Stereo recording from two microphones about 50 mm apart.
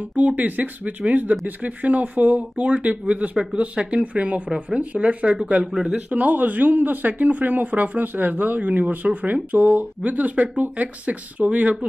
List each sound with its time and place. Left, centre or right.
0.1 s speech: right
5.9 s speech: right